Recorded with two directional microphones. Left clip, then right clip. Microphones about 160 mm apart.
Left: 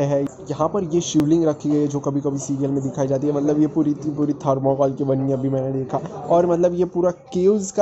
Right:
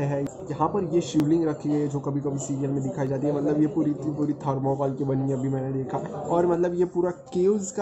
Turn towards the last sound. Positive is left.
turn(degrees=30)  # may be behind; listen again after turning